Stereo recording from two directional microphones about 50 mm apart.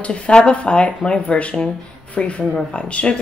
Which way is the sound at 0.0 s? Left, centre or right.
Left.